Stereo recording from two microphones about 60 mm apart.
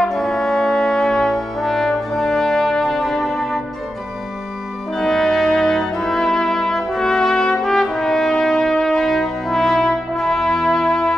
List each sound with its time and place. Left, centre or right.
0.0 s brass instrument: centre
4.9 s music: centre